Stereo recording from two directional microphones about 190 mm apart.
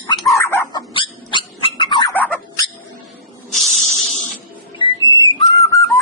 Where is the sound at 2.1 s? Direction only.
5° left (ahead or behind).